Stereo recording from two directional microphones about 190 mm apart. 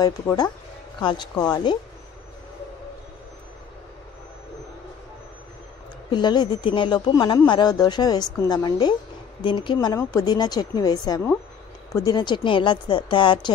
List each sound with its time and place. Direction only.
0.0 s speech: 20° left (ahead or behind)
6.1 s speech: 25° left (ahead or behind)